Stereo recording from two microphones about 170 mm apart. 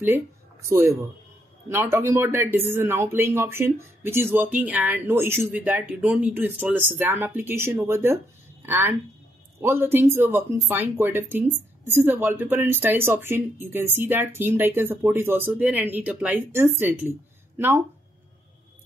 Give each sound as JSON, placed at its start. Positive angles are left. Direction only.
{"t": 0.0, "sound": "speech", "side_deg": -15}